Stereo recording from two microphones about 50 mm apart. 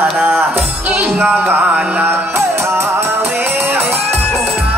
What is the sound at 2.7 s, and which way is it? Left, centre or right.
Music, right.